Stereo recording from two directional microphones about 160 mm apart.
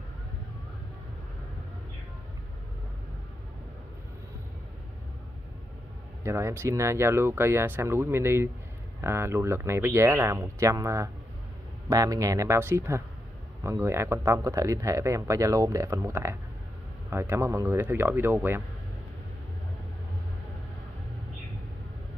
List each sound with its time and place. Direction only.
6.2 s speech: 20° right (ahead or behind)